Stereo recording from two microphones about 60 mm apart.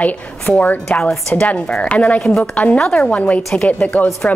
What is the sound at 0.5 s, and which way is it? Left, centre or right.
A woman's voice, centre.